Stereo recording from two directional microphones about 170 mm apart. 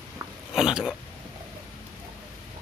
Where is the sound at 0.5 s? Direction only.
Centre (ahead or behind).